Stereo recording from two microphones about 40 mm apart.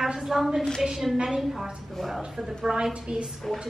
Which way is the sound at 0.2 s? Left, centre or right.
Centre.